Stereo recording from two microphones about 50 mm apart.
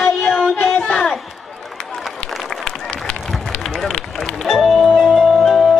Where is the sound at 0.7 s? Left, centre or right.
Left.